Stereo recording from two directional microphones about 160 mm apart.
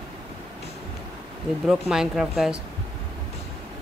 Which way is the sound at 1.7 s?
5° right (ahead or behind).